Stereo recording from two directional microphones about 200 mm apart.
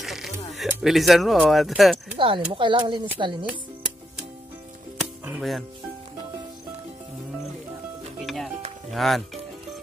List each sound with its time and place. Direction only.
0.0 s speech: centre (ahead or behind)
2.1 s speech: 25° right (ahead or behind)
4.9 s music: 5° right (ahead or behind)
8.2 s music: centre (ahead or behind)
8.9 s speech: centre (ahead or behind)